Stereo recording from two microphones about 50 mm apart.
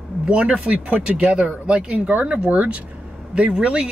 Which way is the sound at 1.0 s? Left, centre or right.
Centre.